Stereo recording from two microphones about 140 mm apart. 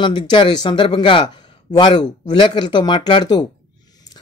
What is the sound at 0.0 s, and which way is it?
Speech, 35° left (ahead or behind).